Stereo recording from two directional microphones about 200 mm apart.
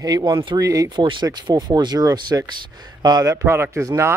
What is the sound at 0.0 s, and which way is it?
Speech, 20° right (ahead or behind).